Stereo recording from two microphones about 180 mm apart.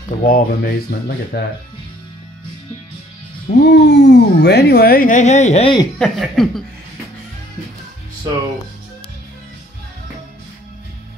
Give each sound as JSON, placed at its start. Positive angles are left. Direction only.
{"t": 0.2, "sound": "speech", "side_deg": 55}
{"t": 3.4, "sound": "speech", "side_deg": 70}
{"t": 5.9, "sound": "speech", "side_deg": 0}